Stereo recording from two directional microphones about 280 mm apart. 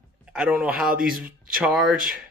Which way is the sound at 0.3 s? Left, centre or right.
Centre.